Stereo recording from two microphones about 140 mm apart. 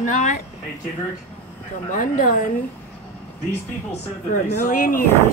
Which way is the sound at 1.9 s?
75° left (ahead or behind).